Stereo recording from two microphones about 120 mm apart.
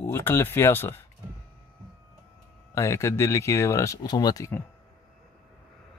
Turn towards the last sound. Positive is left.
turn(degrees=30)  # may be behind; listen again after turning